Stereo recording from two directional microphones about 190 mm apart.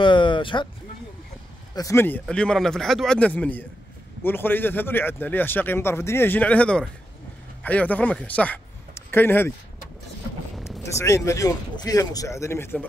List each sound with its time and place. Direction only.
0.0 s a sound: 25° left (ahead or behind)
1.8 s a man's voice: 15° left (ahead or behind)
11.0 s a man's voice: 15° left (ahead or behind)